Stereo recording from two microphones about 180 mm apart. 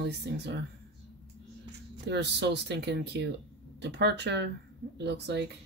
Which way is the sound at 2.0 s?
70° right (ahead or behind).